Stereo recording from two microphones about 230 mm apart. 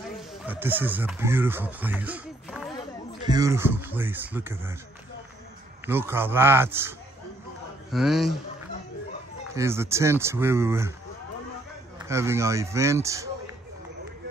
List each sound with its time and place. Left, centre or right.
0.3 s speech: centre
3.3 s speech: centre
5.9 s a man's voice: centre
9.6 s speech: centre
12.0 s speech: centre